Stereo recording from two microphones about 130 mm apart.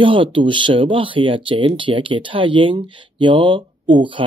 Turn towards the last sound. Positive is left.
turn(degrees=-40)  # may be behind; listen again after turning